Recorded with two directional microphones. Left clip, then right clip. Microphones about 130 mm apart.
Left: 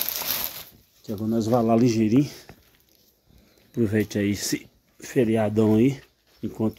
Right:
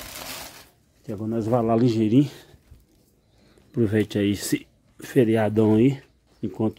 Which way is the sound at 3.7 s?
30° right (ahead or behind).